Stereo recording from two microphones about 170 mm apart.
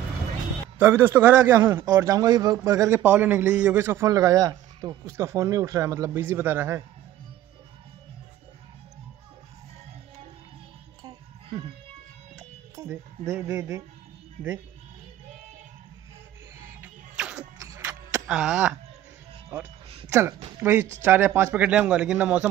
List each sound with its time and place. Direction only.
0.7 s a man's voice: 10° right (ahead or behind)
11.1 s music: 25° right (ahead or behind)
12.9 s speech: centre (ahead or behind)
13.4 s a man's voice: 15° right (ahead or behind)
14.4 s speech: 5° left (ahead or behind)
16.5 s music: 10° right (ahead or behind)
17.6 s music: 15° right (ahead or behind)
18.3 s speech: 5° right (ahead or behind)
20.1 s a man's voice: 15° right (ahead or behind)